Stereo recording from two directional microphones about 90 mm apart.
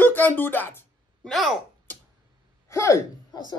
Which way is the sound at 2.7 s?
35° left (ahead or behind).